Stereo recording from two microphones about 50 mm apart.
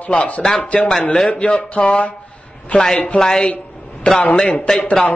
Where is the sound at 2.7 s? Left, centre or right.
Centre.